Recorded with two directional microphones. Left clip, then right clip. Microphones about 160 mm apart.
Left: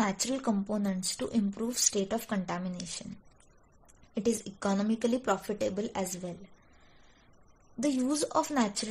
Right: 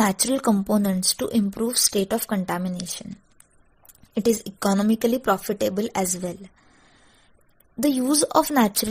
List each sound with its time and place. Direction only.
0.0 s speech: 50° right (ahead or behind)
4.1 s speech: 45° right (ahead or behind)
7.8 s speech: 55° right (ahead or behind)